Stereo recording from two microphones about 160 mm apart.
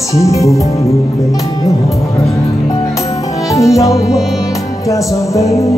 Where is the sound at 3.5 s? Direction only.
20° left (ahead or behind).